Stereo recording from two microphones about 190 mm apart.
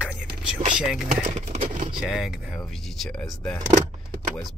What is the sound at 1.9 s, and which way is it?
Speech, 5° right (ahead or behind).